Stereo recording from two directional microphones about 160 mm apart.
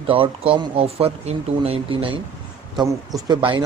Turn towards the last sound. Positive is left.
turn(degrees=-30)  # may be behind; listen again after turning